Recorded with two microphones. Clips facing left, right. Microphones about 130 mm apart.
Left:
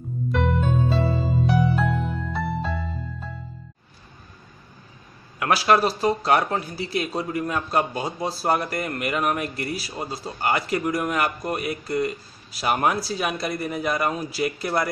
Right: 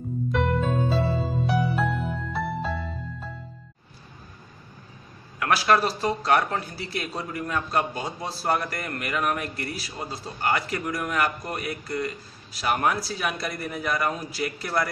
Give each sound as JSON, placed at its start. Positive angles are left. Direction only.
{"t": 0.3, "sound": "music", "side_deg": 0}
{"t": 5.7, "sound": "a man's voice", "side_deg": 20}
{"t": 8.3, "sound": "a man's voice", "side_deg": 20}